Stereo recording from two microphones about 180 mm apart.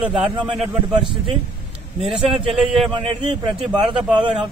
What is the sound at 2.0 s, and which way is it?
A man's voice, 30° right (ahead or behind).